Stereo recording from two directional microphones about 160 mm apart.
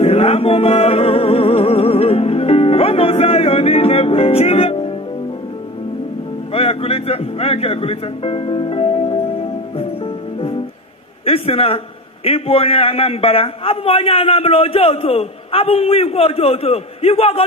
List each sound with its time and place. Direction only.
0.0 s music: 35° left (ahead or behind)
6.5 s music: 40° left (ahead or behind)
11.2 s a man's voice: 35° left (ahead or behind)